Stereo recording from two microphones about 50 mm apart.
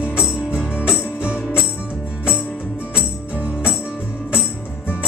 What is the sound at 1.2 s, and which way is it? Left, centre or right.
Music, right.